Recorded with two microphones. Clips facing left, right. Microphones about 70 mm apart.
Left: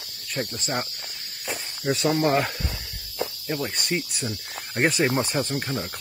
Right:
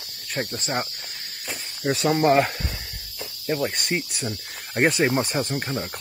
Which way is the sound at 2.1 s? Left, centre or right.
Right.